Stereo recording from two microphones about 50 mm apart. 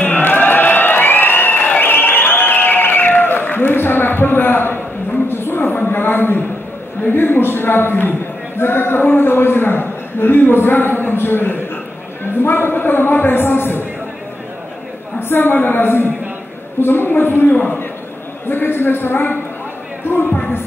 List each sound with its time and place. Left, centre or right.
0.0 s a sound: left
7.1 s a man's voice: left
15.1 s a man's voice: left